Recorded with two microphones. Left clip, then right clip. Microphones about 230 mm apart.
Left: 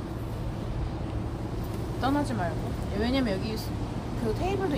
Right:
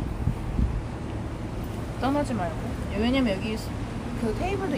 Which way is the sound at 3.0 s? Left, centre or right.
Centre.